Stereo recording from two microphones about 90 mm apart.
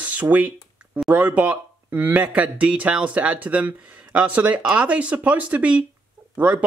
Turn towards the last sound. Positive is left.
turn(degrees=-15)  # may be behind; listen again after turning